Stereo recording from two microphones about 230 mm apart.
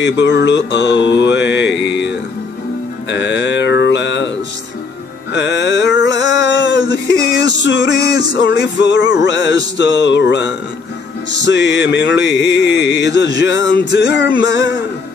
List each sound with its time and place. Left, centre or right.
0.0 s mantra: left
5.3 s a sound: left
7.6 s mantra: left